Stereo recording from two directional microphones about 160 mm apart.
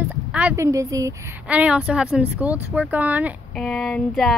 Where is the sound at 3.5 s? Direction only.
5° left (ahead or behind).